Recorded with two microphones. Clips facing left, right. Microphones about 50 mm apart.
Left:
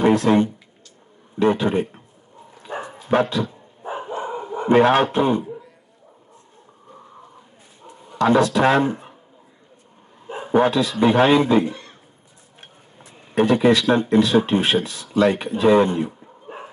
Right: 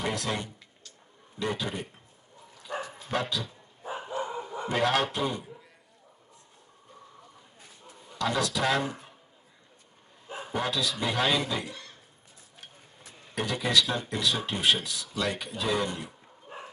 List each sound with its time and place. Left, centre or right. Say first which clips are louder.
0.0 s speech: left 15 dB; left
2.6 s bow-wow: left 5 dB; left
8.1 s speech: left 12 dB; left
10.3 s a man's voice: left 13 dB; left
13.3 s speech: left 13 dB; left